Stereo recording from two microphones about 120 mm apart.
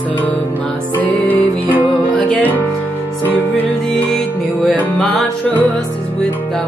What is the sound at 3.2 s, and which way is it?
Music, 15° left (ahead or behind).